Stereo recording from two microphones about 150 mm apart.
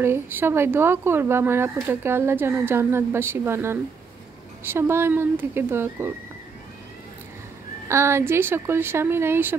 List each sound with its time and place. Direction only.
0.0 s speech: 15° right (ahead or behind)
7.9 s speech: 15° right (ahead or behind)